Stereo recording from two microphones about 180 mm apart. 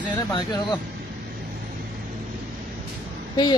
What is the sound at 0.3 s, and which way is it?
Speech, 25° left (ahead or behind).